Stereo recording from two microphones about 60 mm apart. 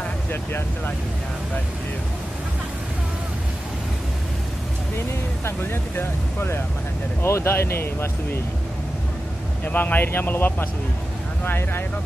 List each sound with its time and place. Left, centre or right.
5.4 s speech: left
9.7 s speech: left